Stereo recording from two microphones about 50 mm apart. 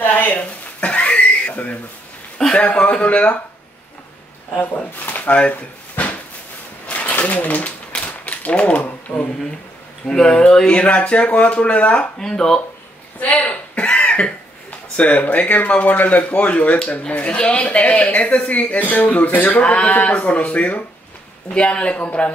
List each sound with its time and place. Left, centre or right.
0.0 s speech: left
0.4 s a sound: left
2.5 s speech: left
4.9 s speech: left
5.4 s drawer open or close: left
6.9 s a sound: left
7.2 s typewriter: left
10.0 s speech: centre
12.2 s speech: centre
13.2 s cough: left
17.1 s speech: left